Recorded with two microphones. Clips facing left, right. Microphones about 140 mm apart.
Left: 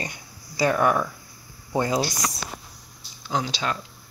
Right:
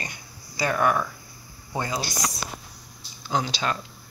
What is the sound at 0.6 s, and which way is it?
Speech, 10° left (ahead or behind).